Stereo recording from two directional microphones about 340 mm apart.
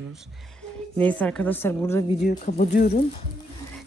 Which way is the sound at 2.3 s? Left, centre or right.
Left.